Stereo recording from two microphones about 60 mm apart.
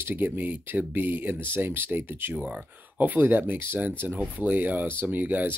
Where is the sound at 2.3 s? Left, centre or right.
Right.